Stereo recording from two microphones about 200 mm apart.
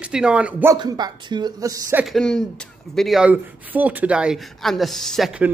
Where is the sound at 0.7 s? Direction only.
20° right (ahead or behind).